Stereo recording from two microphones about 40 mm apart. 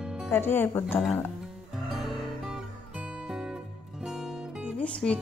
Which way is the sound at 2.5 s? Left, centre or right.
Right.